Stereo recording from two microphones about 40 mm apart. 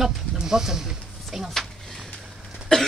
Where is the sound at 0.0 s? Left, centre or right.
Centre.